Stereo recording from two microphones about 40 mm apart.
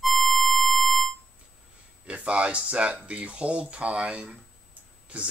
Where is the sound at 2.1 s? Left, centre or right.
Right.